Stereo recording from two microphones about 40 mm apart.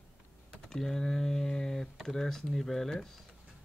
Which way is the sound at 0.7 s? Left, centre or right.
Centre.